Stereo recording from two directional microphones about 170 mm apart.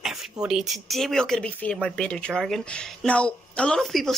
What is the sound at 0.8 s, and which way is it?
Speech, centre (ahead or behind).